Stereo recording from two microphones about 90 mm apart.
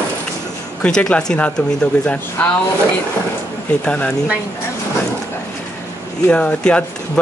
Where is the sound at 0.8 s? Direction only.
10° left (ahead or behind).